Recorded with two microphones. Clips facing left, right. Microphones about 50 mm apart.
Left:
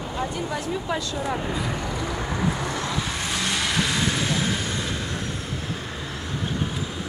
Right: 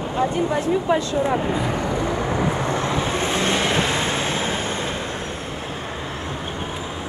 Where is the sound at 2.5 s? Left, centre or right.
Right.